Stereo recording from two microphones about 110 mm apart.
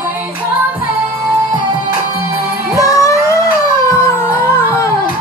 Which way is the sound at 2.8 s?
30° left (ahead or behind).